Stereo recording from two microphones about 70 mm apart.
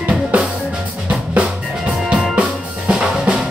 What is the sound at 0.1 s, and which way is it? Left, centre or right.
Drum, centre.